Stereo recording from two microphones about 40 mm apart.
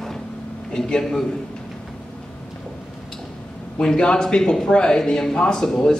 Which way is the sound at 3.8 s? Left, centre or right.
Left.